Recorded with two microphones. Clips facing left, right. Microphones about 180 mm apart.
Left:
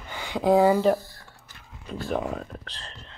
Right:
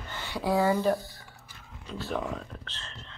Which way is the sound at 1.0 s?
Centre (ahead or behind).